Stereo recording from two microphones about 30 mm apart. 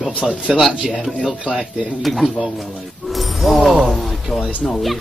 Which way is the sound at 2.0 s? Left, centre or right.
Centre.